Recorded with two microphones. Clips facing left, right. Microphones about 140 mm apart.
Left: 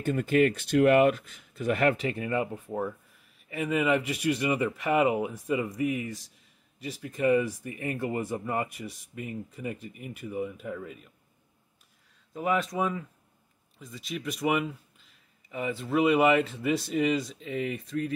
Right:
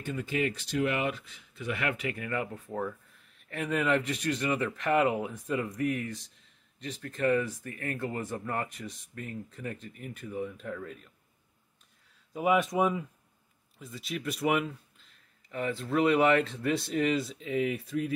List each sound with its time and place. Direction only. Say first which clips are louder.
0.0 s speech: left 8 dB; 50° left (ahead or behind); by 2.5 s 20° left (ahead or behind)
2.5 s speech: left 2 dB; 10° left (ahead or behind)
12.4 s speech: right 2 dB; 15° right (ahead or behind)
13.7 s speech: even; centre (ahead or behind)